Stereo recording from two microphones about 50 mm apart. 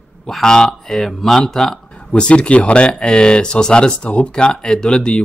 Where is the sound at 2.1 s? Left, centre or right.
Centre.